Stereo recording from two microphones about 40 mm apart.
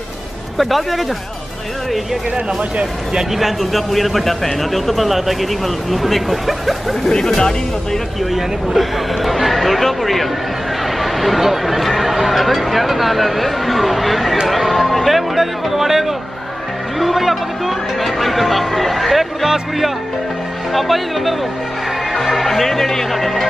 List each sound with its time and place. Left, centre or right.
0.6 s a man's voice: centre
3.3 s a man's voice: centre
7.3 s speech: centre
8.3 s a man's voice: centre
14.5 s music: centre
17.0 s a man's voice: centre
19.4 s a man's voice: centre
22.1 s music: centre
22.4 s a man's voice: centre